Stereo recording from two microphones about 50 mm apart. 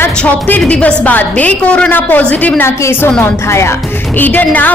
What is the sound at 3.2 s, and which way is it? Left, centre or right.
Speech, left.